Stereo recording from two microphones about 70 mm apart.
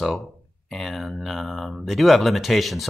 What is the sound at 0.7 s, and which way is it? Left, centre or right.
Speech, centre.